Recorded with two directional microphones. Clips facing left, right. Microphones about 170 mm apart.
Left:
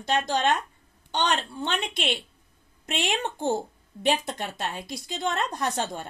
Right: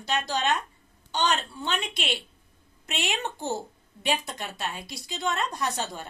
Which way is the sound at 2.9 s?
50° left (ahead or behind).